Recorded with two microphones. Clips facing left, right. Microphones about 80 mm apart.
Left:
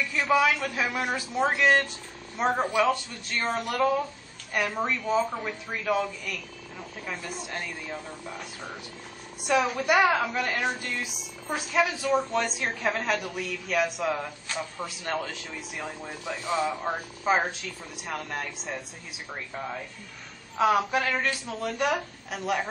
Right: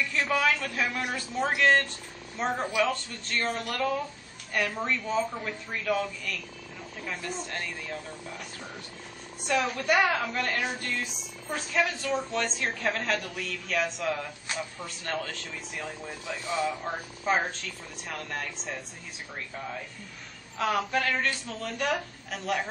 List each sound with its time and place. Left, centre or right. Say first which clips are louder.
0.0 s a man's voice: left 3 dB; centre
2.5 s speech: left 4 dB; centre
2.8 s a woman's voice: left 3 dB; centre
19.5 s speech: left 3 dB; centre
20.5 s a woman's voice: left 4 dB; centre